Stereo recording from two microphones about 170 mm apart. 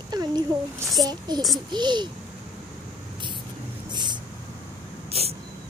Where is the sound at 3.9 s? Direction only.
25° right (ahead or behind).